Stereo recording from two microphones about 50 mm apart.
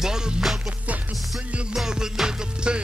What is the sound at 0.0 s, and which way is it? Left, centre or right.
Music, centre.